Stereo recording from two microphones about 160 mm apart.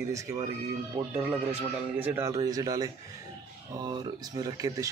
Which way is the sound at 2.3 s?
25° right (ahead or behind).